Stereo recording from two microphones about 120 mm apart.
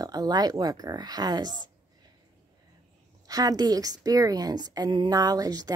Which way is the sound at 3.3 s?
30° right (ahead or behind).